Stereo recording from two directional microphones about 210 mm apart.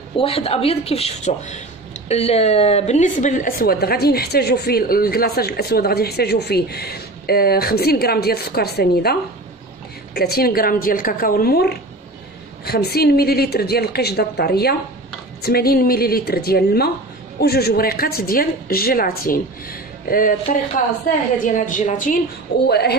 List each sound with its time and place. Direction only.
0.2 s a woman's voice: 30° left (ahead or behind)
22.7 s a woman's voice: 50° left (ahead or behind)